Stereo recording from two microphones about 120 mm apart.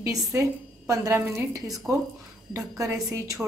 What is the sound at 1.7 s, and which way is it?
Speech, centre (ahead or behind).